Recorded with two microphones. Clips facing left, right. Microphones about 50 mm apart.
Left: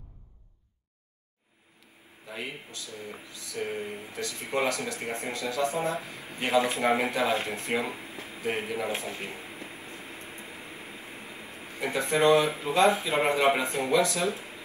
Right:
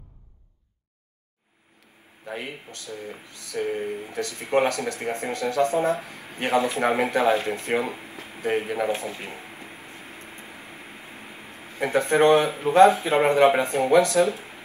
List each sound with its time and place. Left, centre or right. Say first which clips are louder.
2.2 s speech: right 4 dB; right